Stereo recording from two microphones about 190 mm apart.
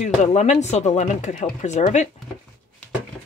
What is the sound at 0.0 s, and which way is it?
Speech, 35° left (ahead or behind).